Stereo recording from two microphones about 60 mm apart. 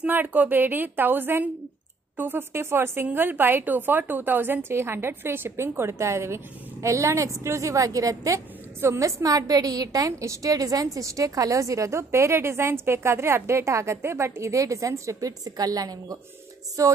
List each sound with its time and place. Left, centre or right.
0.0 s a woman's voice: right
9.0 s a woman's voice: right
16.8 s a woman's voice: right